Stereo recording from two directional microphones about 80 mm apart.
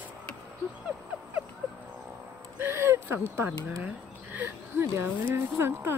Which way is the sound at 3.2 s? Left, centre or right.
Right.